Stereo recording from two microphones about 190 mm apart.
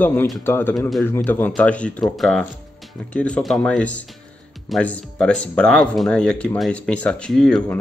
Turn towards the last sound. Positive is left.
turn(degrees=5)  # may be behind; listen again after turning